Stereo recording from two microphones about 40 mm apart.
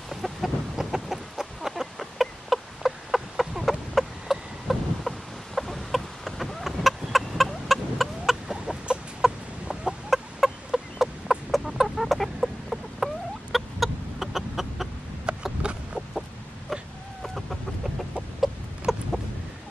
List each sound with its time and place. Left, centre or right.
0.1 s chicken: centre
1.7 s a sound: centre
8.9 s chicken: right
10.0 s chicken: centre
15.3 s a sound: right
17.2 s chicken: centre